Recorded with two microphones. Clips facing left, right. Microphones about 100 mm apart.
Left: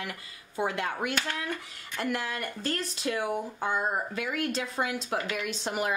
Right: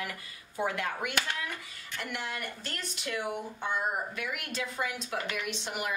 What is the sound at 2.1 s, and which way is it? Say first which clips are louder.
Speech: left 4 dB; 40° left (ahead or behind).